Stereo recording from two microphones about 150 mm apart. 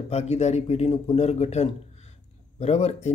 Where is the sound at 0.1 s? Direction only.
45° left (ahead or behind).